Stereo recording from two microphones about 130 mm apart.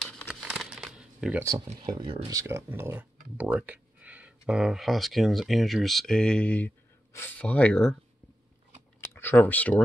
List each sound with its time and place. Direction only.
0.3 s crumpling: 5° right (ahead or behind)
1.4 s speech: 30° right (ahead or behind); by 7.9 s 10° left (ahead or behind)
9.0 s computer keyboard: 15° left (ahead or behind)